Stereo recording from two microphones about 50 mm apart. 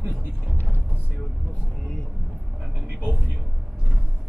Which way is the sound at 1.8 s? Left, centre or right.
Centre.